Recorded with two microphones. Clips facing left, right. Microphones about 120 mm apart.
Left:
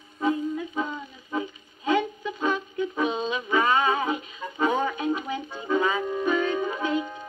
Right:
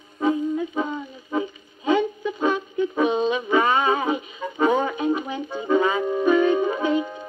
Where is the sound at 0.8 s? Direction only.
15° right (ahead or behind).